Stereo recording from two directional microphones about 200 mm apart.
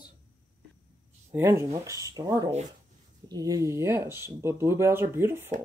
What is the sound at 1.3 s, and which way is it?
Speech, 15° right (ahead or behind).